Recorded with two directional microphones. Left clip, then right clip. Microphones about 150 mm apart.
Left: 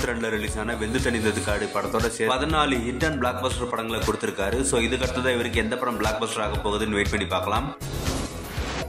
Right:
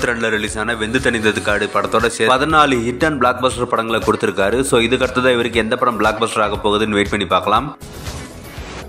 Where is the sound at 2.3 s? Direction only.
35° right (ahead or behind).